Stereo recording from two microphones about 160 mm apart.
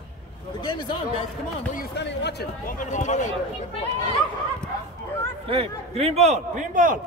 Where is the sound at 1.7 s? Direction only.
90° left.